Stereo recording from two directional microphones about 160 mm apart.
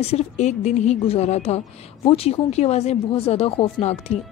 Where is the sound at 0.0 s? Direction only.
40° left (ahead or behind).